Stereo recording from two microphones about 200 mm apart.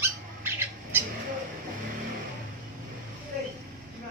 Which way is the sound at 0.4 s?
10° right (ahead or behind).